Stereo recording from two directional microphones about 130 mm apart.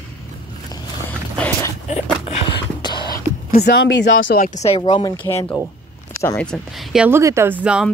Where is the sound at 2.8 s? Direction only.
35° left (ahead or behind).